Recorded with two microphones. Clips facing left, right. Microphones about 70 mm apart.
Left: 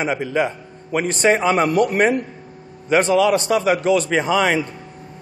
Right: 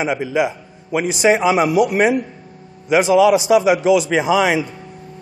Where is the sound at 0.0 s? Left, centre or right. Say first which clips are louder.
Right 2 dB; centre.